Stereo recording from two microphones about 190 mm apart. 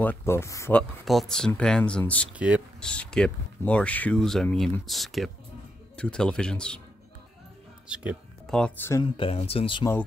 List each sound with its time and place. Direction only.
0.0 s speech: 10° left (ahead or behind)
1.0 s speech: centre (ahead or behind)
2.3 s speech: 5° right (ahead or behind)
2.8 s speech: 5° left (ahead or behind)
7.9 s speech: 5° right (ahead or behind)
8.5 s speech: 10° left (ahead or behind)
9.0 s speech: 30° left (ahead or behind)